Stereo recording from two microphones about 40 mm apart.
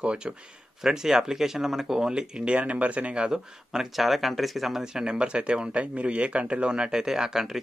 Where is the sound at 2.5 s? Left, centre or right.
Right.